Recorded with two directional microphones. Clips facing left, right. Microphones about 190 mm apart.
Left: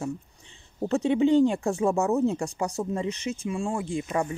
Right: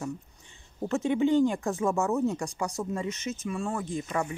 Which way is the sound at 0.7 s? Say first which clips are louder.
Left 3 dB; 30° left (ahead or behind).